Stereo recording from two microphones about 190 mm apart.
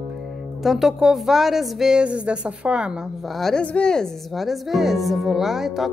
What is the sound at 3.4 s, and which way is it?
Speech, 5° left (ahead or behind).